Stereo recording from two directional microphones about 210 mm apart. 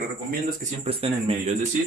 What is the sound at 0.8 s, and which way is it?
Speech, 25° right (ahead or behind).